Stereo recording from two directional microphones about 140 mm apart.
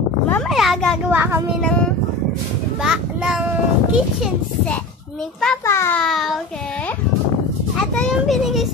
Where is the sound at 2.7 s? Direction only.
5° right (ahead or behind).